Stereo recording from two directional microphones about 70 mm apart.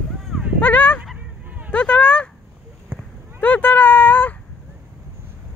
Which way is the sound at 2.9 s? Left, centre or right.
Right.